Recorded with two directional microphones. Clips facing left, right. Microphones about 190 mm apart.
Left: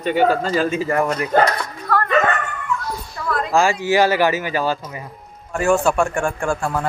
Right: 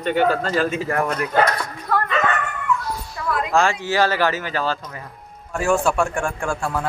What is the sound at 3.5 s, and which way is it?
Speech, 5° left (ahead or behind).